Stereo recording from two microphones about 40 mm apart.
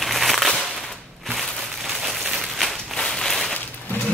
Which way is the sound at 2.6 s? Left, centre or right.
Centre.